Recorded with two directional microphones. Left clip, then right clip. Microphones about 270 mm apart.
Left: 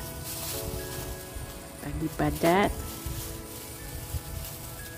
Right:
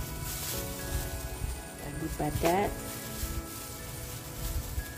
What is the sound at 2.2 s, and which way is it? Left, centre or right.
Speech, left.